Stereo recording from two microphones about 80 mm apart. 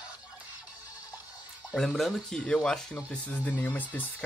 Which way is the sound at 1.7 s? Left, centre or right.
Centre.